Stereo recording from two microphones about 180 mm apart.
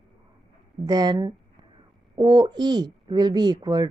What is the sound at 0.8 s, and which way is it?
A woman's voice, 20° right (ahead or behind).